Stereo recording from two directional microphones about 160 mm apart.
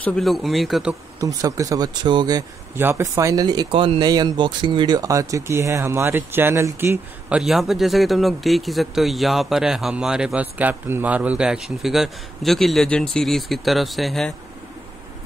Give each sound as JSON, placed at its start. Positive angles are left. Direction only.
{"t": 0.0, "sound": "speech", "side_deg": 5}
{"t": 1.2, "sound": "speech", "side_deg": -20}